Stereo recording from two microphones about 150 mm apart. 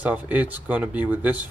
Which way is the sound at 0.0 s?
10° right (ahead or behind).